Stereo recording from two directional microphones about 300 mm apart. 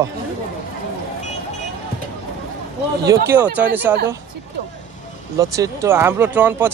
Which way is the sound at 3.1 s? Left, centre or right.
Centre.